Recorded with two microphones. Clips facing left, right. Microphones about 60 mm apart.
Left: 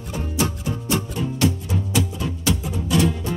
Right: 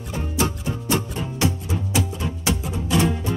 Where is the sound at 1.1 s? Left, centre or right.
Centre.